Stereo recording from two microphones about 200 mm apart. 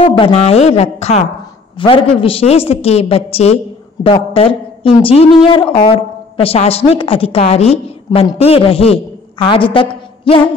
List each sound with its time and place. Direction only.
0.0 s a woman's voice: 25° left (ahead or behind)